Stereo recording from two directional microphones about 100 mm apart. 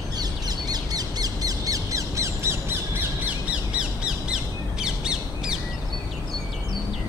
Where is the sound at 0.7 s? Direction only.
40° right (ahead or behind).